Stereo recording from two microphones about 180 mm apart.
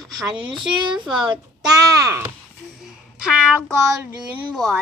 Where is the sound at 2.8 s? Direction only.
5° right (ahead or behind).